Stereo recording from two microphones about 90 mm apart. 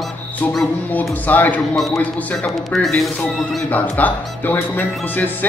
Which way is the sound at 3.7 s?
20° left (ahead or behind).